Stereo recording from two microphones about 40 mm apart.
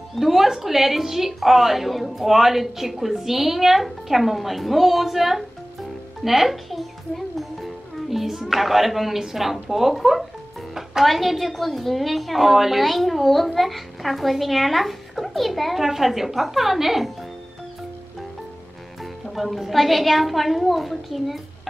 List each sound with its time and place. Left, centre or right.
0.1 s a woman's voice: centre
19.3 s a woman's voice: centre